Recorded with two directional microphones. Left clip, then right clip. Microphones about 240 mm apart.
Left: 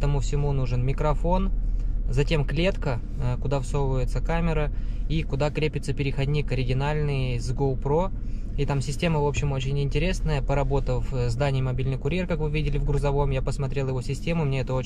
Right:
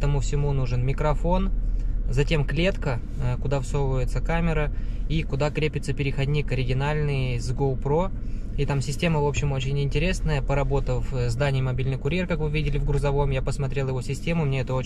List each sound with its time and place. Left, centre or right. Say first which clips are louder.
0.0 s speech: right 1 dB; centre